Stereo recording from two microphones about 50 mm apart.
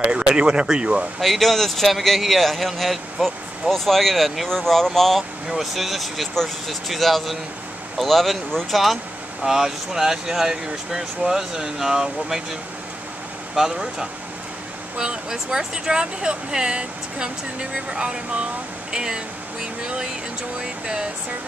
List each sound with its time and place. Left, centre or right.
0.0 s speech: centre
1.2 s a man's voice: centre
6.3 s a man's voice: centre
13.6 s speech: centre